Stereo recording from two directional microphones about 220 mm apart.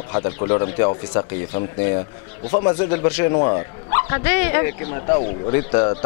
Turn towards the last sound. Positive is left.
turn(degrees=20)  # may be behind; listen again after turning